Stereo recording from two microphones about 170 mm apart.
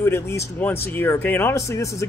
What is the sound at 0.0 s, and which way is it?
Speech, 15° left (ahead or behind).